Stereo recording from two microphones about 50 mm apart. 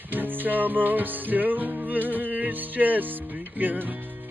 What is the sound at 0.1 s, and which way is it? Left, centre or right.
Music, right.